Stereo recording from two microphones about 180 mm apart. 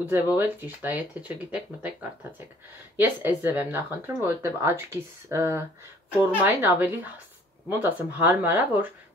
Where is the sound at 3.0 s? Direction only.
10° right (ahead or behind).